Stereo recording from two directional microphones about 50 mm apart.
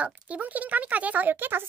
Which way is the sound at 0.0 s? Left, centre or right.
Right.